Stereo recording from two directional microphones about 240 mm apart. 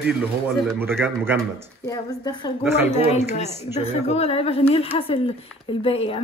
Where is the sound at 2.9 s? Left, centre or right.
Left.